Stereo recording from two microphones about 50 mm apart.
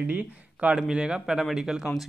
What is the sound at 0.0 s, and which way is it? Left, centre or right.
Speech, right.